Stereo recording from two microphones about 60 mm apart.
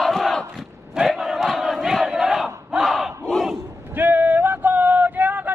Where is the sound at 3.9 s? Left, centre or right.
Right.